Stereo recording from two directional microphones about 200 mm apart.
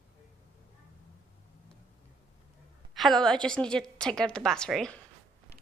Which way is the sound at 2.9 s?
Centre (ahead or behind).